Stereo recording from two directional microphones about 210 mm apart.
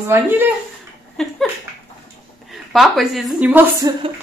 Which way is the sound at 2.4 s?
Centre (ahead or behind).